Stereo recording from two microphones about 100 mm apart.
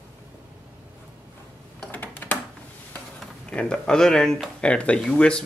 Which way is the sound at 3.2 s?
10° left (ahead or behind).